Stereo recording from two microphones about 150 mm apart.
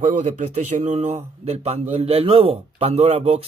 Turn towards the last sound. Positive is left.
turn(degrees=-45)  # may be behind; listen again after turning